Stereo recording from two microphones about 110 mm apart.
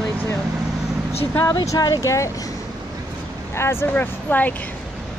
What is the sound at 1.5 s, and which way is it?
Speech, 35° left (ahead or behind).